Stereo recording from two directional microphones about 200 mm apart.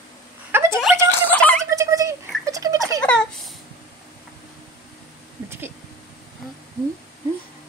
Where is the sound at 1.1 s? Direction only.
10° left (ahead or behind).